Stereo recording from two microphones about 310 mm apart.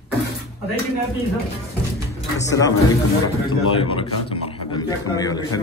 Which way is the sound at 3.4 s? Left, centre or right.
Centre.